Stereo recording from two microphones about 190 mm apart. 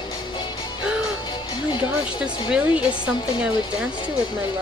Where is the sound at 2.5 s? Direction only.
5° right (ahead or behind).